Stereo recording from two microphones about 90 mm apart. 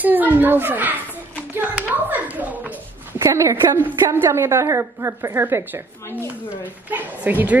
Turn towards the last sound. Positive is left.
turn(degrees=-15)  # may be behind; listen again after turning